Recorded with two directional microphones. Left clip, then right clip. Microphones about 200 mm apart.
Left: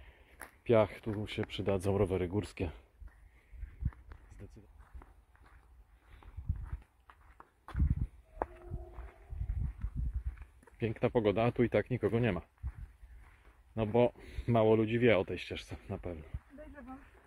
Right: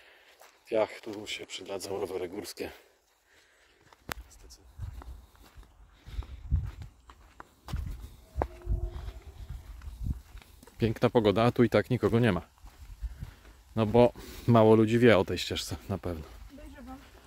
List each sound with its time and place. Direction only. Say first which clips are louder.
0.7 s speech: right 2 dB; 5° right (ahead or behind); by 2.8 s 25° right (ahead or behind)
7.1 s walk: right 6 dB; 10° left (ahead or behind)
10.8 s speech: right 6 dB; 25° right (ahead or behind)
13.7 s speech: right 6 dB; 25° right (ahead or behind)